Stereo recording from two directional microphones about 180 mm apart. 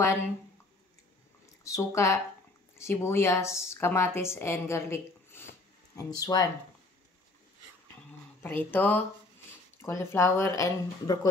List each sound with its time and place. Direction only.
0.0 s speech: 15° left (ahead or behind)
1.6 s speech: 15° left (ahead or behind)
8.4 s speech: 10° left (ahead or behind)